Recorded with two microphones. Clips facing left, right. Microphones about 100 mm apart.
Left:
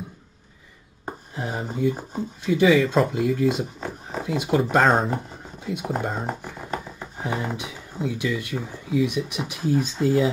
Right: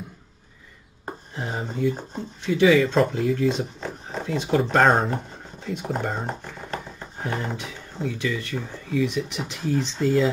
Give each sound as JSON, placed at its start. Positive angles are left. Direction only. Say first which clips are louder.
{"t": 1.9, "sound": "speech", "louder": "left 1 dB", "side_deg": 10}